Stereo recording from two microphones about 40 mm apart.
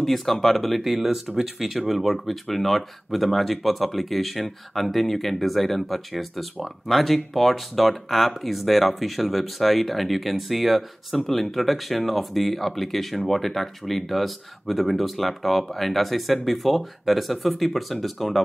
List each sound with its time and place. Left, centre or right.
0.0 s speech: centre